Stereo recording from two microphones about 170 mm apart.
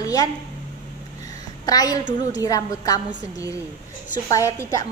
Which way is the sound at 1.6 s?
20° left (ahead or behind).